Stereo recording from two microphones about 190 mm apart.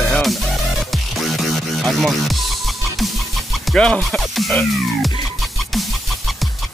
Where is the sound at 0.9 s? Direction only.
Centre (ahead or behind).